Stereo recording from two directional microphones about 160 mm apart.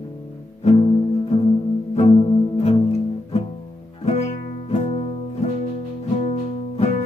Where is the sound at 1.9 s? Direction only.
35° left (ahead or behind).